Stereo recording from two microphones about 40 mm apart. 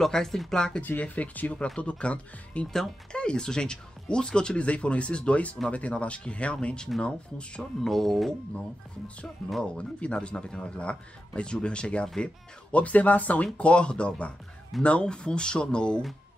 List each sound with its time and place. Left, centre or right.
0.0 s speech: centre
1.1 s speech: left
1.8 s speech: left
2.6 s speech: centre
3.1 s speech: left
7.8 s speech: centre
8.5 s speech: left
12.7 s speech: left